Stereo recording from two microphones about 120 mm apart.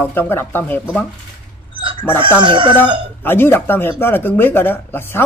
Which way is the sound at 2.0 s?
20° left (ahead or behind).